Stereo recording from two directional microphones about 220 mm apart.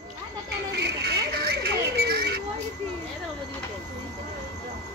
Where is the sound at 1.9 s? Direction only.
45° right (ahead or behind).